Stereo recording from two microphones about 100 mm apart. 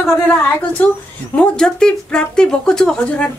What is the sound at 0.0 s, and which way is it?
A woman's voice, 20° left (ahead or behind).